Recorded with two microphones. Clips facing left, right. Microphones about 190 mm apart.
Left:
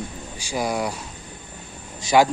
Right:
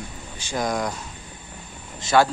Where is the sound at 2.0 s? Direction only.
15° left (ahead or behind).